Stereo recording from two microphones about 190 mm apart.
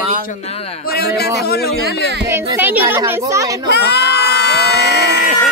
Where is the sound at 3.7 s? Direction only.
60° left (ahead or behind).